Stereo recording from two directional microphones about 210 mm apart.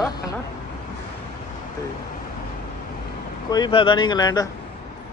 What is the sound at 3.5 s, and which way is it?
Speech, 20° left (ahead or behind).